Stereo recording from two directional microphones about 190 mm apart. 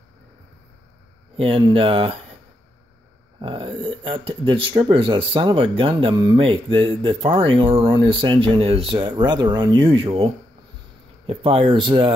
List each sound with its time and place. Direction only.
1.3 s speech: 30° right (ahead or behind)
3.3 s speech: 25° right (ahead or behind)